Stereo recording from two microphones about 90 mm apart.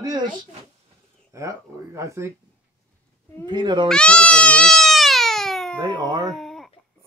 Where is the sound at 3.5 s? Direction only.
55° right (ahead or behind).